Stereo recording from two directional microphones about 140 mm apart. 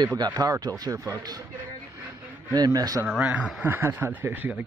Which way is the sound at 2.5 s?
25° right (ahead or behind).